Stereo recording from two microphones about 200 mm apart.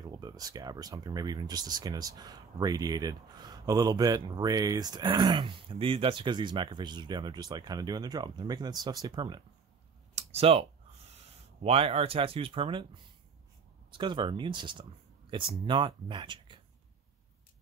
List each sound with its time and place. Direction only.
0.0 s speech: 20° right (ahead or behind)
10.1 s a sound: 30° right (ahead or behind)
11.6 s speech: 30° right (ahead or behind)